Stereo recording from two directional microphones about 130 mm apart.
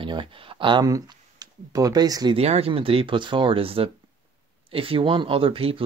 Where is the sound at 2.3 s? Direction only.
50° right (ahead or behind).